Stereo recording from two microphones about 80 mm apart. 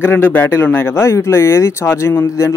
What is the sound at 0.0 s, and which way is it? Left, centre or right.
Speech, left.